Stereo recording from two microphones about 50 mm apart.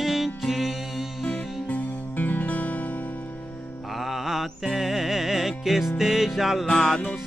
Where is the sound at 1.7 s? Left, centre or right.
Left.